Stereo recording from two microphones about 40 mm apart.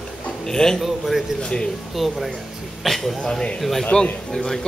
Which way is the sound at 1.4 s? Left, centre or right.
Left.